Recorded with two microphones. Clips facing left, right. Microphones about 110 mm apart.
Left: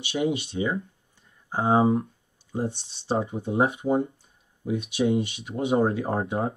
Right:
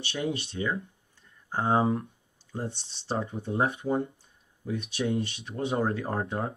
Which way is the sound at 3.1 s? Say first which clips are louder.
Left 5 dB; 25° left (ahead or behind).